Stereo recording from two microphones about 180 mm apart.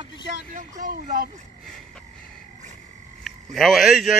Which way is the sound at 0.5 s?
50° right (ahead or behind).